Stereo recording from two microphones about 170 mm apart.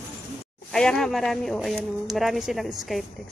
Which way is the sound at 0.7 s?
5° left (ahead or behind).